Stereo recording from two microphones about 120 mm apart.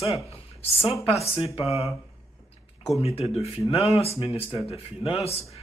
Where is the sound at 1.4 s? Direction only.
55° left (ahead or behind).